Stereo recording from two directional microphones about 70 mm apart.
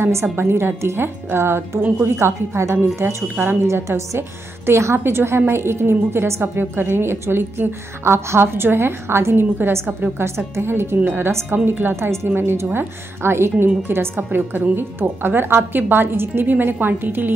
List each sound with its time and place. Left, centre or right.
0.0 s a woman's voice: right